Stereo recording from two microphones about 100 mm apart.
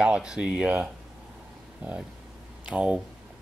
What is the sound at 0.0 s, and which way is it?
Speech, 5° right (ahead or behind).